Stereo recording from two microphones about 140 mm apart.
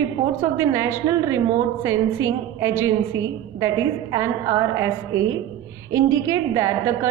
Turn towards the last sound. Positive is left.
turn(degrees=-20)  # may be behind; listen again after turning